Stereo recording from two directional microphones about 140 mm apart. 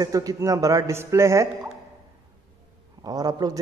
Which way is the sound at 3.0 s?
25° right (ahead or behind).